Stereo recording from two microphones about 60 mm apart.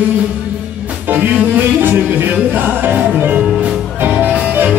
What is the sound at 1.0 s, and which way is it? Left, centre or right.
Music, right.